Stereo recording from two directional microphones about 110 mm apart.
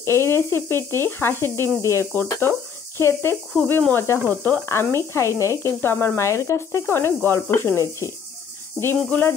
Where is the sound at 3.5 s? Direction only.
10° left (ahead or behind).